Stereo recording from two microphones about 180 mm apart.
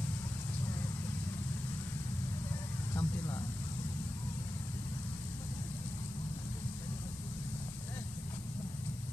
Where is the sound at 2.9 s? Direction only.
20° left (ahead or behind).